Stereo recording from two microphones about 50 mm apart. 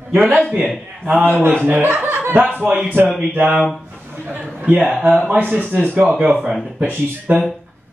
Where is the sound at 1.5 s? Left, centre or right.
Right.